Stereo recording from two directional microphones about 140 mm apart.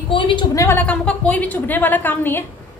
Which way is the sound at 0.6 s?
15° left (ahead or behind).